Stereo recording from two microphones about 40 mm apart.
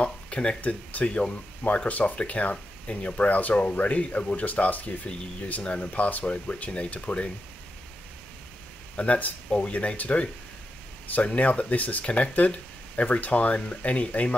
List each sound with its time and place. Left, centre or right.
0.0 s a sound: left
0.6 s speech: left
1.0 s speech: left
1.9 s speech: left
4.5 s speech: left
4.8 s speech: left
8.9 s speech: left